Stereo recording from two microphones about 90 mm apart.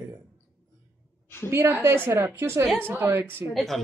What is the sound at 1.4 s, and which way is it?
A woman's voice, 30° right (ahead or behind).